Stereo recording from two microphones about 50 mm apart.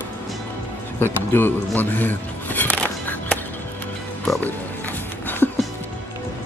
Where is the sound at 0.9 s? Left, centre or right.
Left.